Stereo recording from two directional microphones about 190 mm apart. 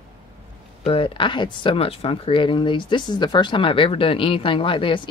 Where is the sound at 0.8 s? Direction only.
30° left (ahead or behind).